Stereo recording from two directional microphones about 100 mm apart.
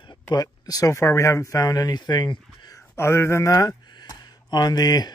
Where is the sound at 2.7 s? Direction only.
25° left (ahead or behind); by 5.1 s 45° left (ahead or behind).